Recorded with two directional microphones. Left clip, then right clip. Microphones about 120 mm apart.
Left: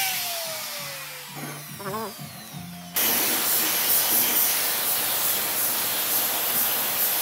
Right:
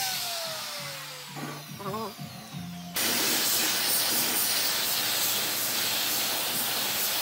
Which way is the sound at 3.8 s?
55° left (ahead or behind).